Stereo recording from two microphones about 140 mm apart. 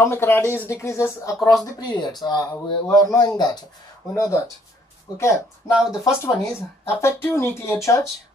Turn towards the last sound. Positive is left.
turn(degrees=20)  # may be behind; listen again after turning